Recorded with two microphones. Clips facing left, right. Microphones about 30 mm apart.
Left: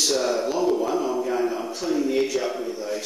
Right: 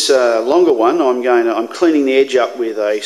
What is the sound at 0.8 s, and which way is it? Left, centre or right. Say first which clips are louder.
A man's voice: right 11 dB; right.